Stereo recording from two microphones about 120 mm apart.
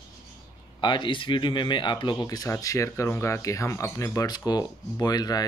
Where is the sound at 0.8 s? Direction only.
40° left (ahead or behind).